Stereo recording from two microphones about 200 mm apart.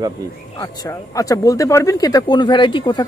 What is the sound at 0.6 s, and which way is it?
Speech, 15° left (ahead or behind).